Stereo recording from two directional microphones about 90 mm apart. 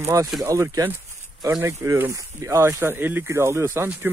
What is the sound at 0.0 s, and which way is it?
Speech, 35° right (ahead or behind).